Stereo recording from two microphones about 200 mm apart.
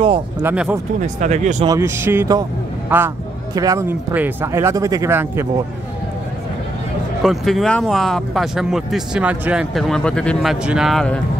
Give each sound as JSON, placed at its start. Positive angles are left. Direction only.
{"t": 0.4, "sound": "speech", "side_deg": -5}
{"t": 1.0, "sound": "speech", "side_deg": -35}
{"t": 1.7, "sound": "speech", "side_deg": -15}
{"t": 7.2, "sound": "speech", "side_deg": 0}